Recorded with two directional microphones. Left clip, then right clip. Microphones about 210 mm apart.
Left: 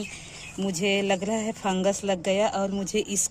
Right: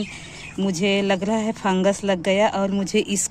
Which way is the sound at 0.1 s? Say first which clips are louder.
Right 5 dB; 10° left (ahead or behind).